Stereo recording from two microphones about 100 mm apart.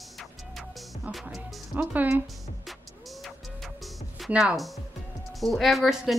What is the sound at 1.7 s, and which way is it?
Speech, 15° right (ahead or behind).